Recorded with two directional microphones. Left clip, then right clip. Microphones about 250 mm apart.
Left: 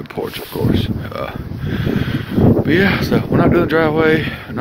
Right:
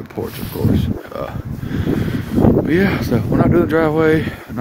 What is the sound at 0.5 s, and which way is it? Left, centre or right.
Speech, centre.